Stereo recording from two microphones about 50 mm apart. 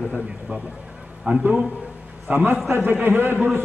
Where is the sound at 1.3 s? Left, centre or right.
Right.